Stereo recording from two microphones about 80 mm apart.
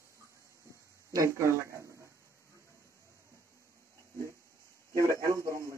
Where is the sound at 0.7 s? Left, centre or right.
Right.